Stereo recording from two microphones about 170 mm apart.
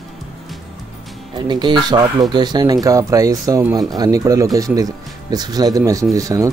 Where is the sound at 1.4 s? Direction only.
25° right (ahead or behind).